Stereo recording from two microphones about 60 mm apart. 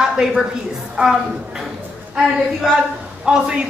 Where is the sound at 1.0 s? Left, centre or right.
Right.